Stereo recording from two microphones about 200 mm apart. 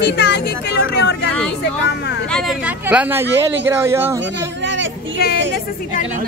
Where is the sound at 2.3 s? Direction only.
Centre (ahead or behind).